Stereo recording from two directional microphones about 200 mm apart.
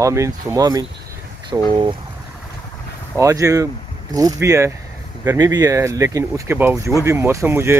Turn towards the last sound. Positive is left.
turn(degrees=-10)  # may be behind; listen again after turning